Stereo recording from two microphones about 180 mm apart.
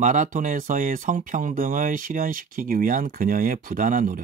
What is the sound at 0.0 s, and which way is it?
Speech, 45° right (ahead or behind).